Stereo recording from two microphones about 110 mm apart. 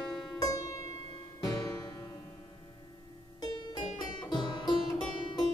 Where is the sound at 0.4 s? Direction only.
30° left (ahead or behind).